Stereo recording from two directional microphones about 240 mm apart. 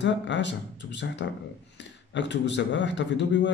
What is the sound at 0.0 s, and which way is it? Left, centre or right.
Speech, left.